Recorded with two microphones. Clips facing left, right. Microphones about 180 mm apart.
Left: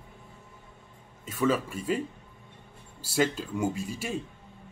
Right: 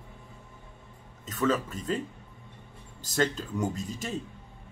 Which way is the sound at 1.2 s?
10° left (ahead or behind).